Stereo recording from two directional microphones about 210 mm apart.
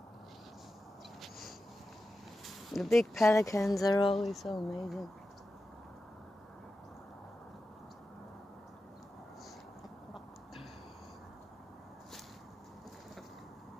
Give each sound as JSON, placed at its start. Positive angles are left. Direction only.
{"t": 2.4, "sound": "speech", "side_deg": 0}
{"t": 3.3, "sound": "speech", "side_deg": 15}
{"t": 4.2, "sound": "speech", "side_deg": 0}